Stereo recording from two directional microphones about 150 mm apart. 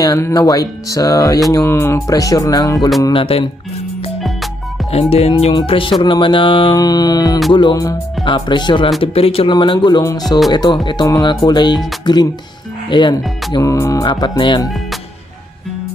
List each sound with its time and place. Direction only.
0.0 s speech: 25° left (ahead or behind)
3.1 s speech: 35° left (ahead or behind)
5.1 s speech: 45° left (ahead or behind); by 14.7 s 25° left (ahead or behind)